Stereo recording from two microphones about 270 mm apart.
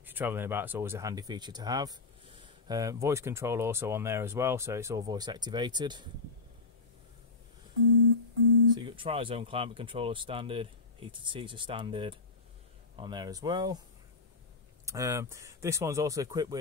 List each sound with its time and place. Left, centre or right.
0.0 s speech: centre
8.7 s speech: centre
14.9 s speech: centre